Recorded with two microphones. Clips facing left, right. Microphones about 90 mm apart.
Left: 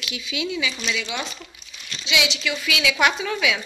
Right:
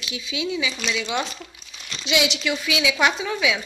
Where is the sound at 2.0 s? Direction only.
45° right (ahead or behind).